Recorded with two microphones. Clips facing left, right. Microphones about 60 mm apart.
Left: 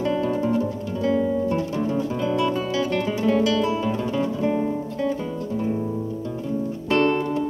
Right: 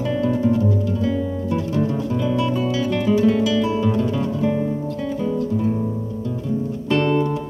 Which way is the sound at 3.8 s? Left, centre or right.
Centre.